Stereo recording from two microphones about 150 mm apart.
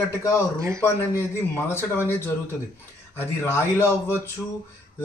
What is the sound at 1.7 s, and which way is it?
Speech, 15° left (ahead or behind).